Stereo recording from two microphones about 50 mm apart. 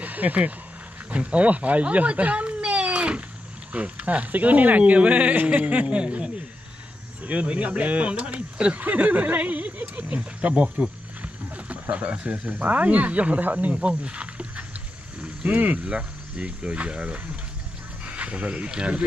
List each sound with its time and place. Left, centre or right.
0.0 s speech: right
11.9 s speech: right
13.7 s speech: right
18.0 s a sound: right
18.7 s speech: centre